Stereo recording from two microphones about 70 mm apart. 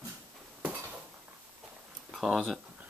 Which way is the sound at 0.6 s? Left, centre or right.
Right.